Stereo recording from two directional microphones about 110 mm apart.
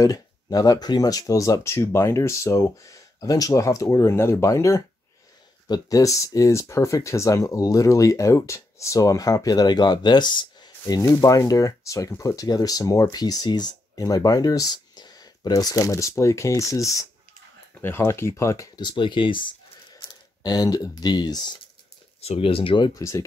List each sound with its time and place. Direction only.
0.0 s speech: 35° left (ahead or behind)
18.8 s speech: 45° left (ahead or behind)
20.4 s speech: 35° left (ahead or behind)
22.2 s speech: 65° left (ahead or behind); by 22.9 s 50° left (ahead or behind)
22.9 s speech: 30° left (ahead or behind)